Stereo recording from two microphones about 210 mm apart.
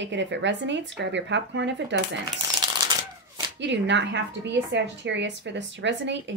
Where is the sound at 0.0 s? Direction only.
60° right (ahead or behind).